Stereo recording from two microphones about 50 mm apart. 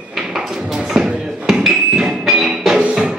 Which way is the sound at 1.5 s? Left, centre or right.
Centre.